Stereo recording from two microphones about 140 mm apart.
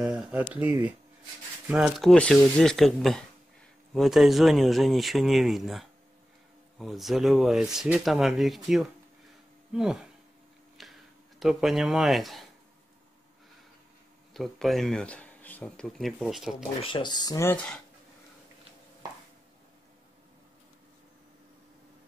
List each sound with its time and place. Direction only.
0.0 s speech: 5° right (ahead or behind)
14.3 s speech: centre (ahead or behind)
16.8 s speech: 35° left (ahead or behind)